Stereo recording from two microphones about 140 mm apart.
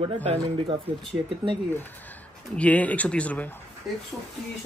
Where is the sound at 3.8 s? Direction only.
Centre (ahead or behind).